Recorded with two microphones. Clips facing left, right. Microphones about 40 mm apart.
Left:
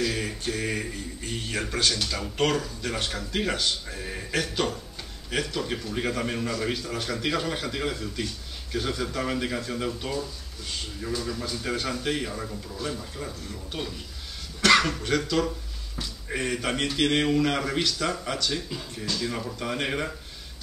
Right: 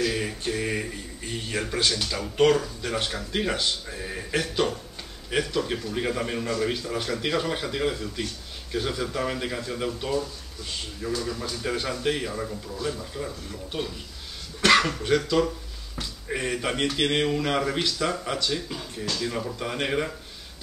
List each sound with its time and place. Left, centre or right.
0.0 s a sound: centre
0.4 s speech: centre
0.8 s a man's voice: centre
2.3 s speech: centre
3.8 s a man's voice: centre